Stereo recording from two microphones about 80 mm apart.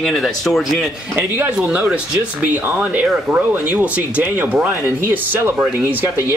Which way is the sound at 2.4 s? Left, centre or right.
Right.